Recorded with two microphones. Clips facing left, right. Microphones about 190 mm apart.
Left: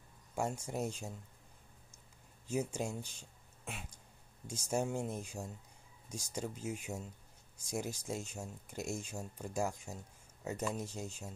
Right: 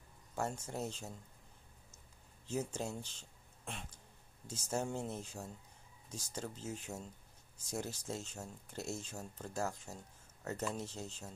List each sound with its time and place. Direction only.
0.3 s speech: 10° left (ahead or behind)
2.4 s speech: 10° left (ahead or behind)